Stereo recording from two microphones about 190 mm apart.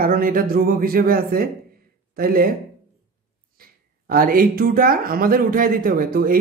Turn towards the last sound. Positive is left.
turn(degrees=-50)  # may be behind; listen again after turning